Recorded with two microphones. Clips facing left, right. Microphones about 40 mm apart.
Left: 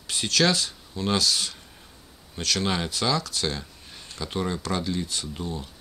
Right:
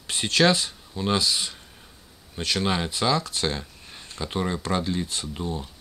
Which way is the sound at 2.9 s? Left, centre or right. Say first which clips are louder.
Right 2 dB; right.